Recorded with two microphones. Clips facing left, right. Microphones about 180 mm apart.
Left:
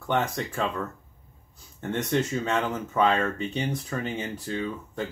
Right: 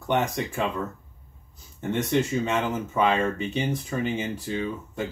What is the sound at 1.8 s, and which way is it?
Speech, 15° right (ahead or behind).